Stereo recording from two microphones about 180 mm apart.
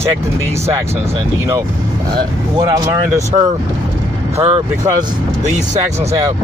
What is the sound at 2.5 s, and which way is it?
Speech, 15° right (ahead or behind).